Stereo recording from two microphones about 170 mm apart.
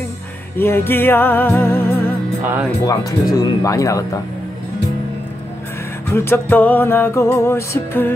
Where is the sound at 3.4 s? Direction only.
20° left (ahead or behind).